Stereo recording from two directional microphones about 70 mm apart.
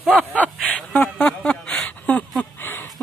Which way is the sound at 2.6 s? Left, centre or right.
Left.